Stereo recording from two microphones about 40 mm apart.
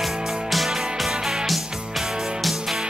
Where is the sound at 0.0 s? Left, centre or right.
Centre.